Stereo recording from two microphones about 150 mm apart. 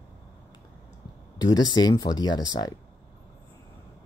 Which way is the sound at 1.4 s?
25° left (ahead or behind).